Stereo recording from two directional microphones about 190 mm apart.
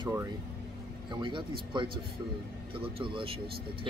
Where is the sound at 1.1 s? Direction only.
25° right (ahead or behind).